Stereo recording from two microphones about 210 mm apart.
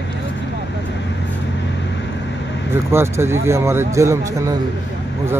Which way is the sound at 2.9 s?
10° right (ahead or behind).